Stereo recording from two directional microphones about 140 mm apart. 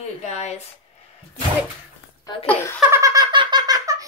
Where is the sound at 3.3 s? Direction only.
35° right (ahead or behind).